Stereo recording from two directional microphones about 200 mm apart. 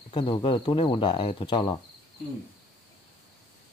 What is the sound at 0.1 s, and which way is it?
Speech, 25° left (ahead or behind).